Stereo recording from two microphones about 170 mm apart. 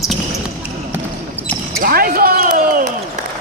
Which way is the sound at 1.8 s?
60° right (ahead or behind).